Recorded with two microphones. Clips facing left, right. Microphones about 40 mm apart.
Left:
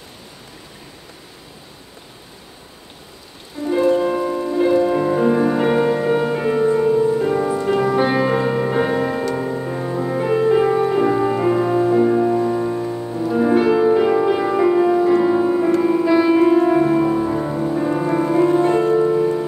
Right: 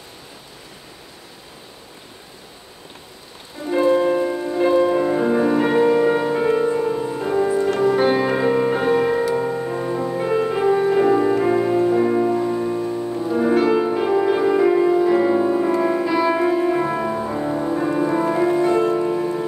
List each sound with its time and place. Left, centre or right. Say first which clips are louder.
3.6 s music: left 5 dB; right
4.0 s music: even; centre
8.7 s music: right 1 dB; centre
16.8 s music: left 6 dB; centre
18.0 s music: even; centre
18.5 s music: left 2 dB; left
19.0 s music: left 4 dB; centre